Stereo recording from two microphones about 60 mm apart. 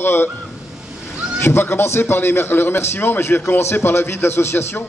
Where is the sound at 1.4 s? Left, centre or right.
Left.